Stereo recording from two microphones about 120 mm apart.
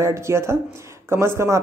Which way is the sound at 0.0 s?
25° right (ahead or behind).